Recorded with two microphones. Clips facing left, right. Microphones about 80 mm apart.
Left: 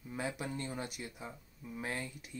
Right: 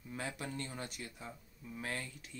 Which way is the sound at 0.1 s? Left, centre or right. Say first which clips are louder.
Left 3 dB; centre.